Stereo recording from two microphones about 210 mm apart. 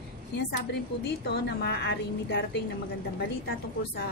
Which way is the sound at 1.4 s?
50° left (ahead or behind).